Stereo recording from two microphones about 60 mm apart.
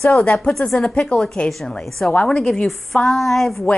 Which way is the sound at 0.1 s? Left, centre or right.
Centre.